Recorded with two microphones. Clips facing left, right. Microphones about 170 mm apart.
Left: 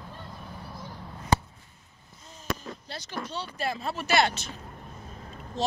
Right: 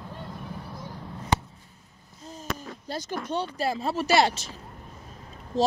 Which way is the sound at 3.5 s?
35° right (ahead or behind).